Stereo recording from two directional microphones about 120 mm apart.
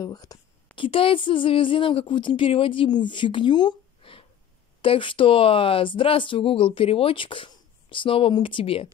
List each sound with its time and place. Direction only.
0.0 s a woman's voice: 35° left (ahead or behind)
0.7 s speech: 45° left (ahead or behind)